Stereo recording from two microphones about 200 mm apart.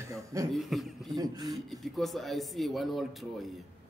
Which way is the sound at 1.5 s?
Centre (ahead or behind).